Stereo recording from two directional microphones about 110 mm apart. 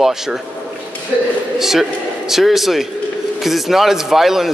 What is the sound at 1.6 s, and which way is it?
A man's voice, 5° right (ahead or behind).